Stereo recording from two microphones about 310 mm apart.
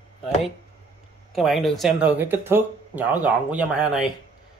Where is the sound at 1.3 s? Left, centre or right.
Centre.